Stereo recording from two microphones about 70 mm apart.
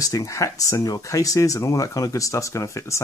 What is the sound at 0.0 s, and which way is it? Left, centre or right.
Speech, left.